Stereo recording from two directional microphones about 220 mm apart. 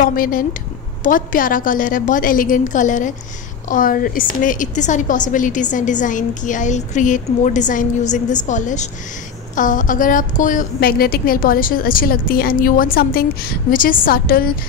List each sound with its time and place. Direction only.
0.0 s a woman's voice: 40° left (ahead or behind)